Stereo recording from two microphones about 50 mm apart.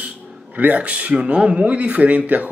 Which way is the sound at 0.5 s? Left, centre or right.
Right.